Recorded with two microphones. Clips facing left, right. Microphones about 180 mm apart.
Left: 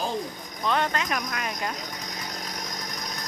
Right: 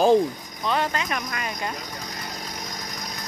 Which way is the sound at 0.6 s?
Centre (ahead or behind).